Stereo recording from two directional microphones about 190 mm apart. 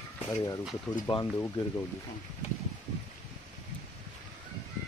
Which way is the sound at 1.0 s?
20° left (ahead or behind).